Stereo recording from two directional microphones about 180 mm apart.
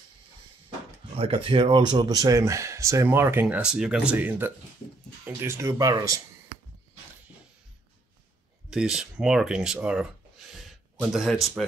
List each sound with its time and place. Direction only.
1.1 s speech: 30° right (ahead or behind)
8.6 s speech: 5° right (ahead or behind)
11.1 s speech: centre (ahead or behind)